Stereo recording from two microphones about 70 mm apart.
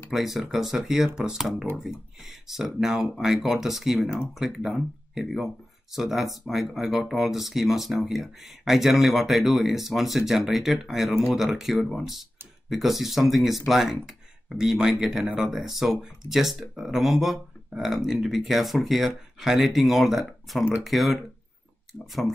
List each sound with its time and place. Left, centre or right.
0.1 s speech: centre
15.2 s speech: centre
15.5 s speech: centre